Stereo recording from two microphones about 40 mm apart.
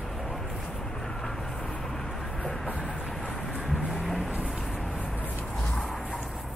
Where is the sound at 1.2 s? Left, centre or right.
Centre.